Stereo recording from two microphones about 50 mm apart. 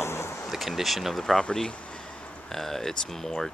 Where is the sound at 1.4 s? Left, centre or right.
Centre.